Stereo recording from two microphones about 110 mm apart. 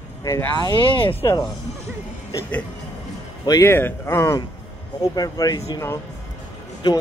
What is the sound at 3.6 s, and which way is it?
Speech, 20° left (ahead or behind).